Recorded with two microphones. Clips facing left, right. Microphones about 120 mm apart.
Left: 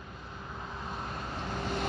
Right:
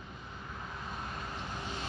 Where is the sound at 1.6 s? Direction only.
65° left (ahead or behind).